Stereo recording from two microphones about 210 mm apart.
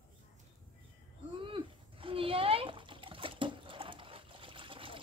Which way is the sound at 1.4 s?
25° right (ahead or behind).